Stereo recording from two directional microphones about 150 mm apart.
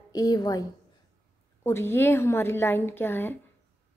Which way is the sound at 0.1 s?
25° left (ahead or behind).